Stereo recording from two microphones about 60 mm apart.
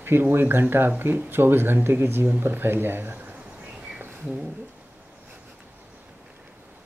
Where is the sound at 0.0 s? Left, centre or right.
Right.